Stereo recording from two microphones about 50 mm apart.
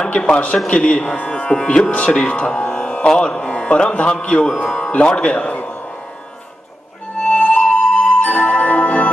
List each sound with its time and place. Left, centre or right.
0.0 s speech: centre
1.5 s speech: centre
1.9 s speech: left
4.6 s music: centre
4.9 s a man's voice: centre
7.2 s music: left